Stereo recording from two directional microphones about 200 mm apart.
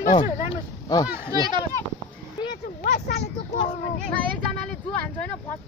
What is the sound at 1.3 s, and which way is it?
Speech, 20° right (ahead or behind).